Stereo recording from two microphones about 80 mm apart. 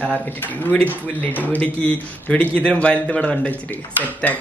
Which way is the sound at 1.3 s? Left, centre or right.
Left.